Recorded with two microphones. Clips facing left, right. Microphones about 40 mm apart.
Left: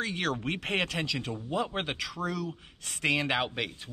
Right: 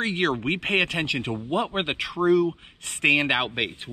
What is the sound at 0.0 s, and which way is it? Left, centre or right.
Speech, right.